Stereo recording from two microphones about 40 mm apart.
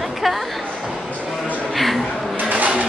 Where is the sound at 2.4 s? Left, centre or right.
Right.